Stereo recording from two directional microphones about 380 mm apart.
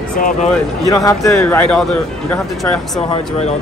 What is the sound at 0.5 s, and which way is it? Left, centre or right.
A man's voice, centre.